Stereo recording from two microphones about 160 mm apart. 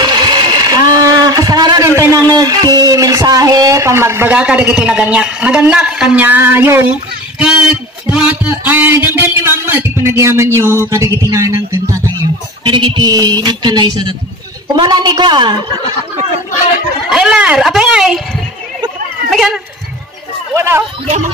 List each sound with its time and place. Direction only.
0.0 s a sound: 25° right (ahead or behind); by 7.5 s 10° right (ahead or behind)
8.1 s a man's voice: 10° right (ahead or behind)
12.6 s speech: 30° right (ahead or behind)
17.1 s speech: 5° right (ahead or behind)
19.3 s speech: 5° right (ahead or behind)
20.5 s speech: 15° right (ahead or behind)